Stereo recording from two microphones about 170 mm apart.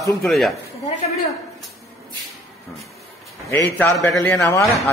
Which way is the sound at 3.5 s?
15° left (ahead or behind).